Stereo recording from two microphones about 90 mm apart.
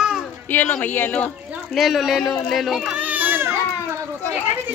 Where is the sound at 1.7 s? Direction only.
Centre (ahead or behind).